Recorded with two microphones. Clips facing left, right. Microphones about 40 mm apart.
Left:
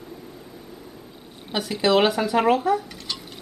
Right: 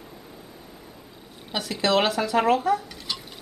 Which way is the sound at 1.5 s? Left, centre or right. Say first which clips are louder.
Left 3 dB; centre.